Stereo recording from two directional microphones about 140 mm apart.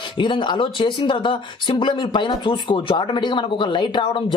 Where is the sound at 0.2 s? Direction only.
35° left (ahead or behind).